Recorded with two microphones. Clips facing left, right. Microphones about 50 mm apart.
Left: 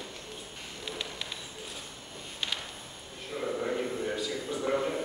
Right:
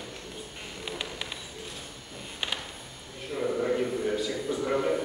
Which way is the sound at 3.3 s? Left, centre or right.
Centre.